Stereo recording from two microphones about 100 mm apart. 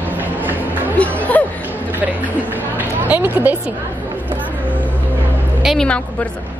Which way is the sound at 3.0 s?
15° right (ahead or behind).